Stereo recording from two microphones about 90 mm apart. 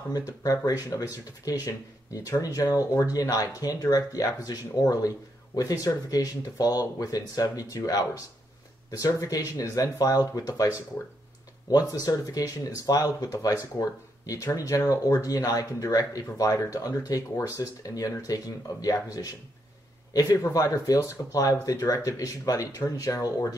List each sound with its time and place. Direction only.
0.1 s speech: 45° left (ahead or behind)
11.7 s speech: 40° left (ahead or behind)